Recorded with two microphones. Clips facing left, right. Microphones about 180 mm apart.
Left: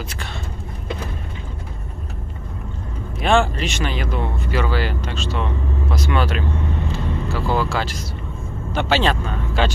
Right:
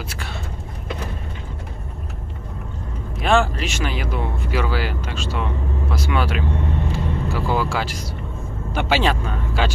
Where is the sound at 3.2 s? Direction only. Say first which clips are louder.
Left 1 dB; 5° right (ahead or behind).